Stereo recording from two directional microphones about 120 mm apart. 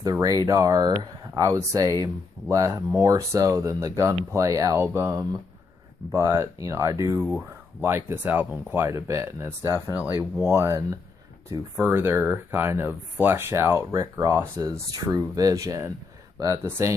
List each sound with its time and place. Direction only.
0.0 s speech: 30° right (ahead or behind)